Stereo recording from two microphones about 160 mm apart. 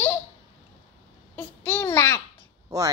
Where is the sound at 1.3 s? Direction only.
15° left (ahead or behind).